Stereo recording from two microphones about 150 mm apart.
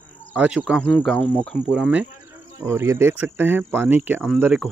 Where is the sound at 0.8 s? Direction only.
10° left (ahead or behind).